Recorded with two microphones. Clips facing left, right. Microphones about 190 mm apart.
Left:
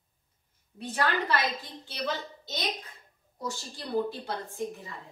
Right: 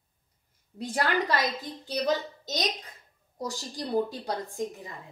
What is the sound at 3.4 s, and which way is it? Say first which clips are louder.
Speech: right 3 dB; 35° right (ahead or behind).